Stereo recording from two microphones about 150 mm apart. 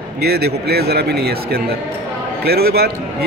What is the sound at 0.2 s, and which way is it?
A man's voice, 90° right.